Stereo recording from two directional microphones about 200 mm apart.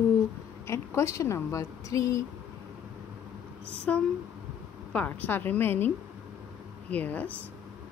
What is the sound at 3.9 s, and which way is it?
A woman's voice, 5° left (ahead or behind).